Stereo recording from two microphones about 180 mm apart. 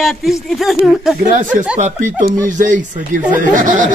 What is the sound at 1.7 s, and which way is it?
Speech, 45° right (ahead or behind).